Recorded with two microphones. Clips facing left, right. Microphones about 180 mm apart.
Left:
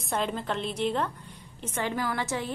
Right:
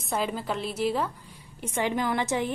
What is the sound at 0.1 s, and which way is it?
A woman's voice, 5° right (ahead or behind).